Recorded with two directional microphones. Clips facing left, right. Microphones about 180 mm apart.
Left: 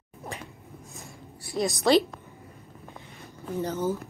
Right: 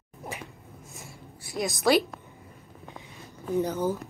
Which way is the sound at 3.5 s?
15° right (ahead or behind).